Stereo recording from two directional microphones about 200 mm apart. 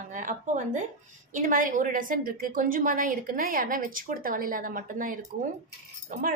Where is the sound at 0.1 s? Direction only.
40° right (ahead or behind).